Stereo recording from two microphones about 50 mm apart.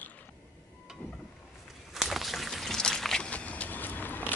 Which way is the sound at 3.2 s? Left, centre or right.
Left.